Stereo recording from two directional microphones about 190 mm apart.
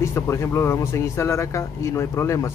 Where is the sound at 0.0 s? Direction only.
15° left (ahead or behind).